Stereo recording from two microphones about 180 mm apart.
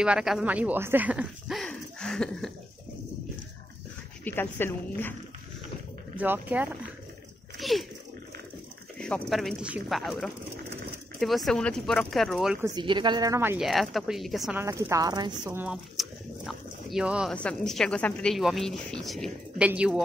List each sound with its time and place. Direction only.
0.0 s a woman's voice: 5° right (ahead or behind)
4.2 s speech: 10° left (ahead or behind)
6.1 s speech: 10° right (ahead or behind)
7.5 s a sound: centre (ahead or behind)
8.9 s a woman's voice: 5° left (ahead or behind)
12.6 s a woman's voice: 25° right (ahead or behind)
13.6 s a woman's voice: centre (ahead or behind)
14.6 s a woman's voice: 15° right (ahead or behind)
15.4 s dog: 5° right (ahead or behind)
17.3 s a woman's voice: 5° left (ahead or behind)